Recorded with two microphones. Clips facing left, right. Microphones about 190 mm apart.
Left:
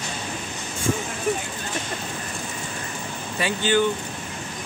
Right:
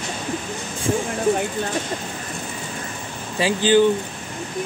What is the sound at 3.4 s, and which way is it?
Speech, 30° right (ahead or behind).